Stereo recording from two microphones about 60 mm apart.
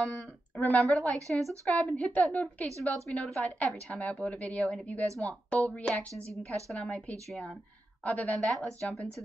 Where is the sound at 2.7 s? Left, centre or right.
Right.